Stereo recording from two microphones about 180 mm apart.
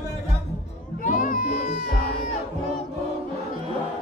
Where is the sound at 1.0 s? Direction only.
45° left (ahead or behind).